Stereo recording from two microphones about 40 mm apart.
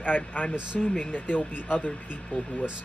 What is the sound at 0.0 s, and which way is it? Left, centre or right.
Speech, left.